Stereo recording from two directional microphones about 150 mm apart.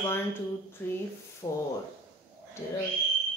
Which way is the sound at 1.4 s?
25° left (ahead or behind).